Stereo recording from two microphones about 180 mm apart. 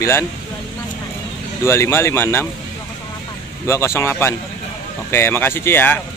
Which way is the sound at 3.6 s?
15° left (ahead or behind).